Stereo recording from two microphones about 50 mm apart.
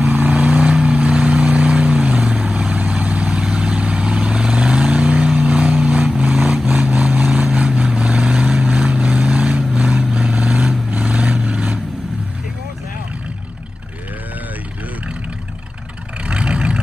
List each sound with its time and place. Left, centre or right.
0.0 s vehicle: right
16.3 s vehicle: right